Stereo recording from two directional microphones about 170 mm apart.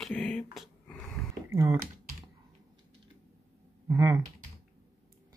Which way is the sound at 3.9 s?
20° right (ahead or behind).